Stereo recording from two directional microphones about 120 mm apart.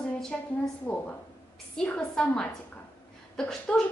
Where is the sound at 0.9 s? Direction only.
15° left (ahead or behind).